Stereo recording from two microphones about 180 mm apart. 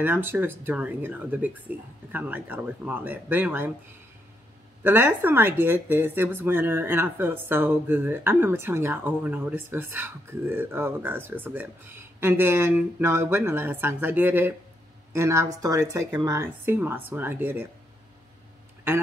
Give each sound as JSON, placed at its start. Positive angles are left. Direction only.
{"t": 0.0, "sound": "speech", "side_deg": -10}
{"t": 4.8, "sound": "speech", "side_deg": -10}